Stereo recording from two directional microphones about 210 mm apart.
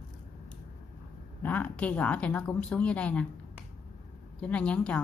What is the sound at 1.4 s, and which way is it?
Speech, 5° left (ahead or behind).